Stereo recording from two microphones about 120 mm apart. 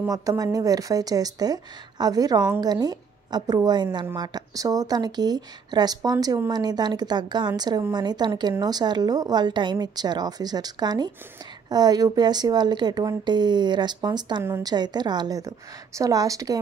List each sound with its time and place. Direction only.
0.0 s a woman's voice: 25° right (ahead or behind)